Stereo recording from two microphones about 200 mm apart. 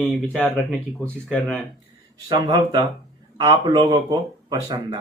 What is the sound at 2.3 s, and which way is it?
Speech, 20° right (ahead or behind).